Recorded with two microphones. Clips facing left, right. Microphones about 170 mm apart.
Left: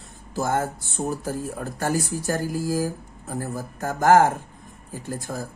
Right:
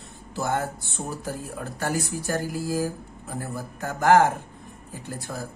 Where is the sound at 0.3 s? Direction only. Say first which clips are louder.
Left 2 dB; 45° left (ahead or behind).